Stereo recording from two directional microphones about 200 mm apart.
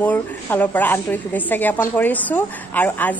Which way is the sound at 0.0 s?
10° left (ahead or behind).